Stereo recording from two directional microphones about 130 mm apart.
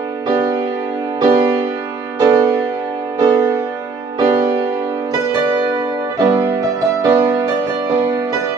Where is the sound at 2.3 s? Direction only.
20° right (ahead or behind).